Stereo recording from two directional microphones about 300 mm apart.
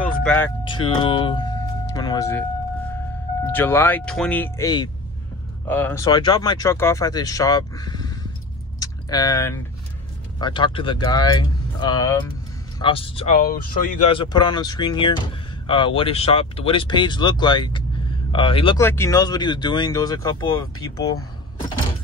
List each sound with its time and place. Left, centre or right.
0.0 s vehicle: centre
0.7 s speech: centre
3.5 s speech: centre
8.7 s a sound: centre
10.4 s speech: centre